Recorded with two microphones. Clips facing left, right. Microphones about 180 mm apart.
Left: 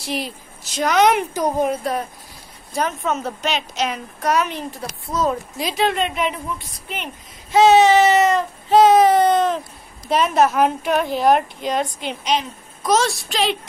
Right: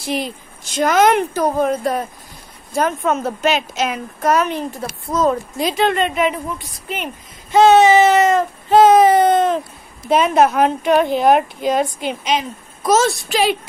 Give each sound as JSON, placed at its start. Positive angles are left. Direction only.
{"t": 0.0, "sound": "speech", "side_deg": 0}
{"t": 1.3, "sound": "speech", "side_deg": 15}
{"t": 1.8, "sound": "a woman's voice", "side_deg": 0}
{"t": 7.5, "sound": "a woman's voice", "side_deg": 0}